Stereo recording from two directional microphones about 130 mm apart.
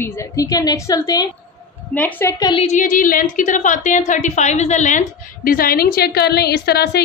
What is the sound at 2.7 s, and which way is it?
A woman's voice, 90° left.